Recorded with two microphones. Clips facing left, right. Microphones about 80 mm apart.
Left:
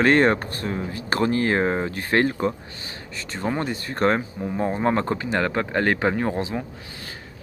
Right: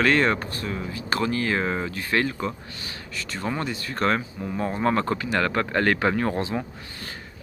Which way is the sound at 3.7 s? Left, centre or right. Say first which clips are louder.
Left 4 dB; left.